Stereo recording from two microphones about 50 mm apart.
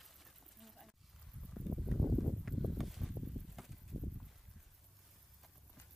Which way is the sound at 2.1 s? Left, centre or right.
Centre.